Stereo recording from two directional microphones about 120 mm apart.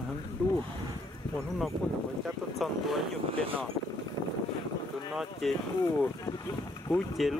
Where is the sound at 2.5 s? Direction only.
Centre (ahead or behind).